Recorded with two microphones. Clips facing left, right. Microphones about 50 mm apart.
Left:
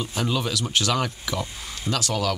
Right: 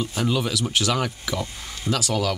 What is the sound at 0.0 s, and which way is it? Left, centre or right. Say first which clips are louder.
Speech: right 2 dB; centre.